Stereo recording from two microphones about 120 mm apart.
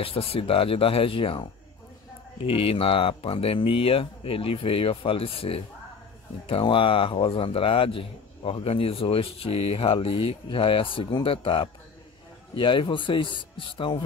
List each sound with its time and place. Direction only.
0.0 s speech: 50° left (ahead or behind)